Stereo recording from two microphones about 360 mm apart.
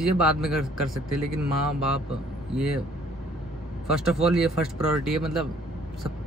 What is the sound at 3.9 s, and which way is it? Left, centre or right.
A man's voice, centre.